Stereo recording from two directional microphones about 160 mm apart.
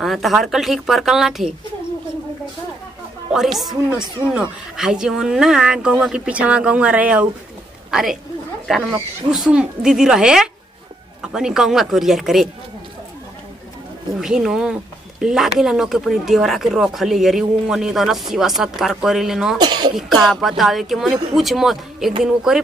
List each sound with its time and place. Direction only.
0.0 s speech: centre (ahead or behind)
3.3 s a woman's voice: centre (ahead or behind)
14.2 s speech: 5° right (ahead or behind)
19.6 s cough: 25° right (ahead or behind)
20.0 s speech: centre (ahead or behind)